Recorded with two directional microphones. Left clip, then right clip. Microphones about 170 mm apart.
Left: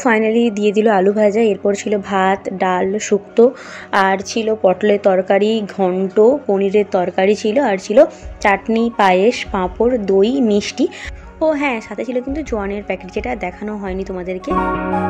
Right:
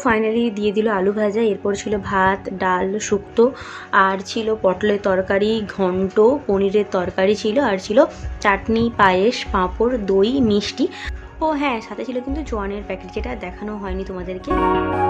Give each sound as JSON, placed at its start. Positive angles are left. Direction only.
{"t": 0.0, "sound": "a woman's voice", "side_deg": 20}
{"t": 14.6, "sound": "music", "side_deg": 0}